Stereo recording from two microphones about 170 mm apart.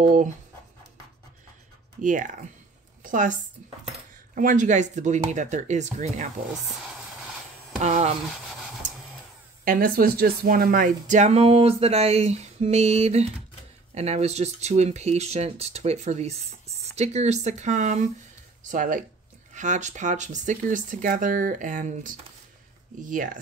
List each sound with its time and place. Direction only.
0.0 s speech: 50° right (ahead or behind)
2.0 s a woman's voice: 50° right (ahead or behind)
4.4 s speech: 50° right (ahead or behind)
7.8 s speech: 40° right (ahead or behind)
9.7 s speech: 60° right (ahead or behind)